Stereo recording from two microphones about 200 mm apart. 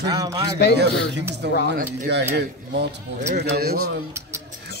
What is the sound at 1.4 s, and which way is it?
Speech, 60° right (ahead or behind).